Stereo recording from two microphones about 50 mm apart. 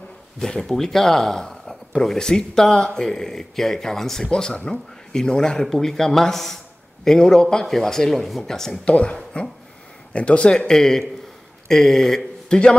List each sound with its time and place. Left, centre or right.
0.4 s a man's voice: centre
8.8 s speech: left